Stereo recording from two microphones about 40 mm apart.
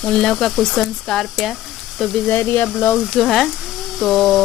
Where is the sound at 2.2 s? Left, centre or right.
Left.